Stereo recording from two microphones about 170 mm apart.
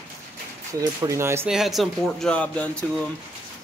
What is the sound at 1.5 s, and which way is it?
Speech, centre (ahead or behind).